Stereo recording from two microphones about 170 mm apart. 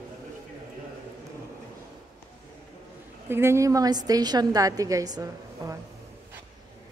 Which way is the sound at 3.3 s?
15° right (ahead or behind).